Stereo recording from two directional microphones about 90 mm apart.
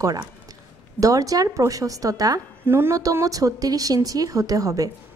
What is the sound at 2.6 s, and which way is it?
Speech, 25° right (ahead or behind).